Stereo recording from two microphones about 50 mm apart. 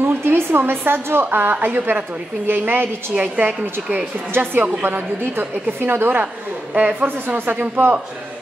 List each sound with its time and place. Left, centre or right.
0.0 s a woman's voice: right
6.7 s a woman's voice: right
7.3 s speech: right